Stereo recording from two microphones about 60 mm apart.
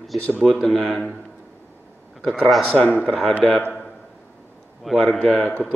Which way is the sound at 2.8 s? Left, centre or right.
Left.